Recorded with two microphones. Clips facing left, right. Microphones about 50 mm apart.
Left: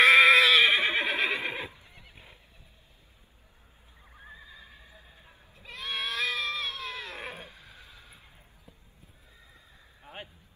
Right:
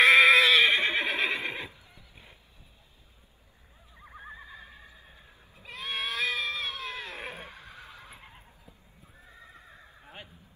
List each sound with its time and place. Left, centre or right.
0.0 s neigh: centre
1.7 s neigh: left
4.0 s neigh: right
5.6 s goat: centre
7.3 s neigh: right
9.4 s horse: right